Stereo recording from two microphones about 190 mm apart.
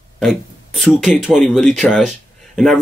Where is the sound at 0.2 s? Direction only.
Centre (ahead or behind).